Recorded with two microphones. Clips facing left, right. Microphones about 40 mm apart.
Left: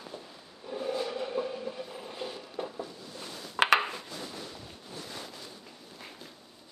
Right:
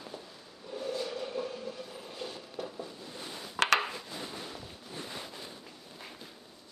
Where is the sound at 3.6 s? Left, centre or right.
Centre.